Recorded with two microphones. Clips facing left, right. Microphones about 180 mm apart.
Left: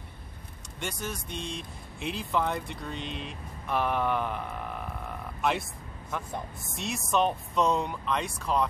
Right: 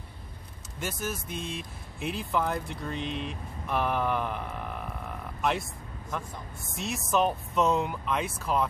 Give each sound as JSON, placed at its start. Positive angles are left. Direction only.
{"t": 0.7, "sound": "speech", "side_deg": -5}